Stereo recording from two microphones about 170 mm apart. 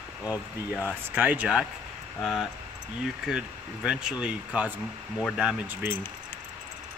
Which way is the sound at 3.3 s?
5° right (ahead or behind).